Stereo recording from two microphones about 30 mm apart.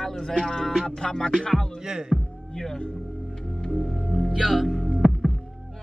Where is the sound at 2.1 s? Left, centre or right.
Centre.